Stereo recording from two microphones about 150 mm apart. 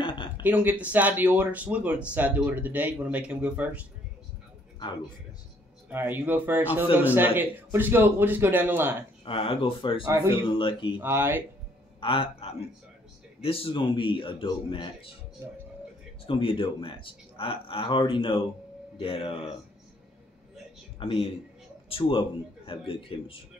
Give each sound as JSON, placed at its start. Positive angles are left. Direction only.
{"t": 0.0, "sound": "a sound", "side_deg": 35}
{"t": 0.4, "sound": "speech", "side_deg": -10}
{"t": 5.9, "sound": "speech", "side_deg": -15}
{"t": 9.2, "sound": "speech", "side_deg": 35}
{"t": 10.0, "sound": "a man's voice", "side_deg": -20}
{"t": 10.4, "sound": "speech", "side_deg": 30}
{"t": 11.0, "sound": "speech", "side_deg": -15}
{"t": 12.0, "sound": "a man's voice", "side_deg": 35}
{"t": 15.4, "sound": "speech", "side_deg": -15}
{"t": 16.3, "sound": "speech", "side_deg": 35}
{"t": 21.0, "sound": "speech", "side_deg": 35}